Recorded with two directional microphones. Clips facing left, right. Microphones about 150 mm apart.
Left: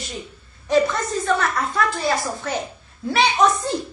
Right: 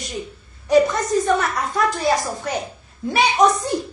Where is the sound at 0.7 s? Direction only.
15° right (ahead or behind).